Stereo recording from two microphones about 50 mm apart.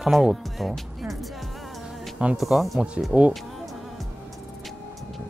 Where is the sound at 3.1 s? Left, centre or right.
Right.